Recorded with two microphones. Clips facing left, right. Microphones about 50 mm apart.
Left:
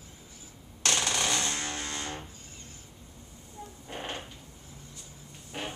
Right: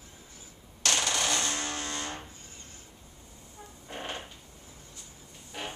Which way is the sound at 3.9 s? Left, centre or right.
Centre.